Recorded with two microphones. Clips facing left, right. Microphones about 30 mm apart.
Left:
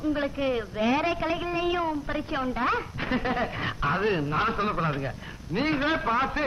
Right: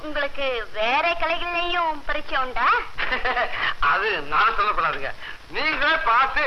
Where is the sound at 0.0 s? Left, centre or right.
Right.